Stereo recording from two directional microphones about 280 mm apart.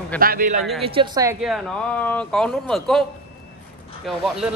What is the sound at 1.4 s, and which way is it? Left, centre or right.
Speech, centre.